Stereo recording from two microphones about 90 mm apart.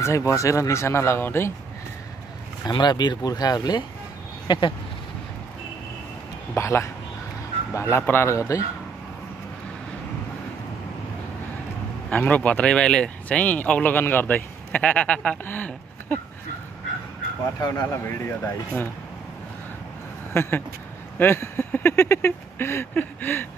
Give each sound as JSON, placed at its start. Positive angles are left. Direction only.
{"t": 0.0, "sound": "speech", "side_deg": 35}
{"t": 2.6, "sound": "speech", "side_deg": 55}
{"t": 4.5, "sound": "speech", "side_deg": 65}
{"t": 6.5, "sound": "speech", "side_deg": 30}
{"t": 12.1, "sound": "speech", "side_deg": 15}
{"t": 17.6, "sound": "speech", "side_deg": 40}
{"t": 20.3, "sound": "speech", "side_deg": 25}